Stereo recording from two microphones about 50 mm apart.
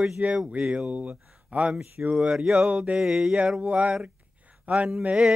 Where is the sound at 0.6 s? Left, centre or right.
Centre.